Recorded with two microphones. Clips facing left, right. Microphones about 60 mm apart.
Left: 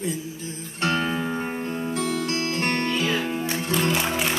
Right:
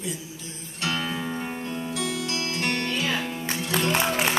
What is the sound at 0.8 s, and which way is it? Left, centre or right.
Music, left.